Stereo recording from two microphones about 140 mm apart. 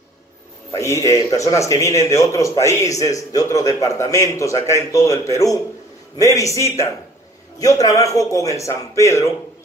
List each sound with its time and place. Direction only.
0.7 s a man's voice: 20° left (ahead or behind)